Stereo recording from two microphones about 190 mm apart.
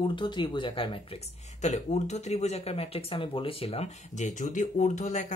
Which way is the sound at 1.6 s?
35° left (ahead or behind).